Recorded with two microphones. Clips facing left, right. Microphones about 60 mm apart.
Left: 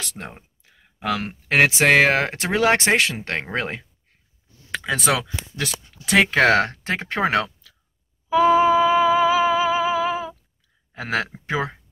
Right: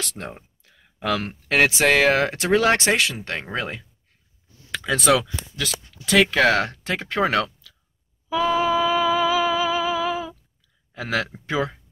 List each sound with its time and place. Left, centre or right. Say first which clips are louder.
0.2 s speech: right 2 dB; centre
0.7 s a sound: even; centre
1.5 s speech: left 2 dB; left
3.2 s speech: left 2 dB; left
4.8 s speech: right 3 dB; left
8.3 s humming: left 5 dB; left
10.9 s speech: left 1 dB; left